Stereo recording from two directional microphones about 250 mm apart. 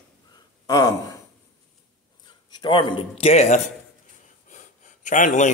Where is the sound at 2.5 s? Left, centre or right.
Centre.